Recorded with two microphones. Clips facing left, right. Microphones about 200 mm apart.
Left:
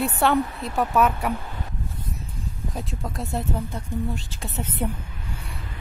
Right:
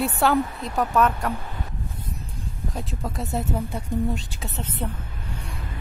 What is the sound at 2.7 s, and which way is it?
Speech, centre (ahead or behind).